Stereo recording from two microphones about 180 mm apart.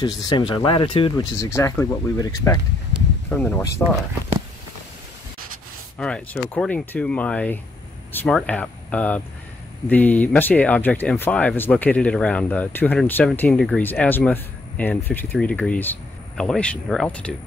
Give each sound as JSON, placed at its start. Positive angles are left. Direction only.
{"t": 0.0, "sound": "speech", "side_deg": 25}
{"t": 1.3, "sound": "speech", "side_deg": 15}
{"t": 3.3, "sound": "speech", "side_deg": 5}
{"t": 5.9, "sound": "speech", "side_deg": 5}